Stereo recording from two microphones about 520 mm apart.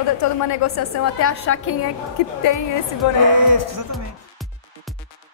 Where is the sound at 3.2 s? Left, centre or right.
Right.